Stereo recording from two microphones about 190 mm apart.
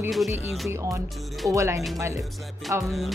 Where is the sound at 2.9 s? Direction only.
Centre (ahead or behind).